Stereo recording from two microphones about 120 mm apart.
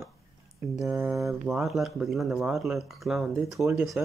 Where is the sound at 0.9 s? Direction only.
25° right (ahead or behind).